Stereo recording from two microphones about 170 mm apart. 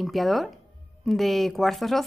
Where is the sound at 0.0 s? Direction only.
Centre (ahead or behind).